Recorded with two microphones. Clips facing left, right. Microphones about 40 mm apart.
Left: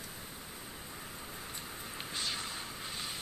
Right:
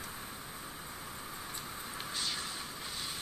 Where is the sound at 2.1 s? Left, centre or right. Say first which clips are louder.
Left 1 dB; left.